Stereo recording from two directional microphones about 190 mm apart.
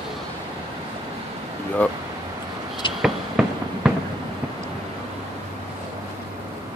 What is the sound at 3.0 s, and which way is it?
Fireworks, 5° right (ahead or behind).